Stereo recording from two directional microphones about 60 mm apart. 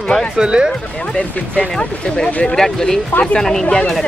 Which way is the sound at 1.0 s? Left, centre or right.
Left.